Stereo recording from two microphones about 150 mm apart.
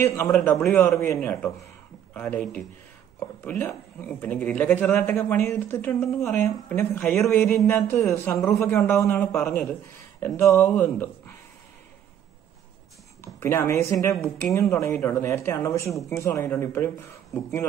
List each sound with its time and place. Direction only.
0.0 s a woman's voice: 15° left (ahead or behind)
13.2 s a woman's voice: 15° left (ahead or behind)